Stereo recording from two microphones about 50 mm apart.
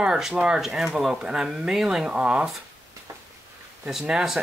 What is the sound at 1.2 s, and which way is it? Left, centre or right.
Speech, centre.